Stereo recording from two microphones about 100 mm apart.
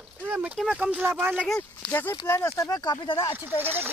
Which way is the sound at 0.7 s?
10° right (ahead or behind).